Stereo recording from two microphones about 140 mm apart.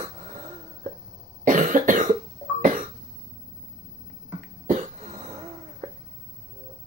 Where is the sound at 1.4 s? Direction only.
70° right (ahead or behind).